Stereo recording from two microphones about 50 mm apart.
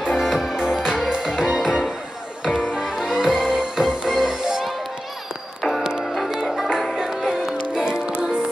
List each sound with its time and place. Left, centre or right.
0.0 s music: centre
5.6 s music: centre
7.7 s music: centre